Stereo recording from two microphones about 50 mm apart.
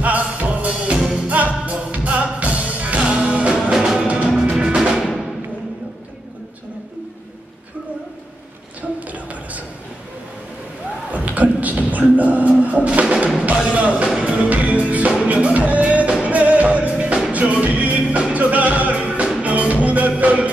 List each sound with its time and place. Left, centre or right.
0.0 s music: right
3.7 s music: centre
9.1 s a sound: right
11.1 s music: right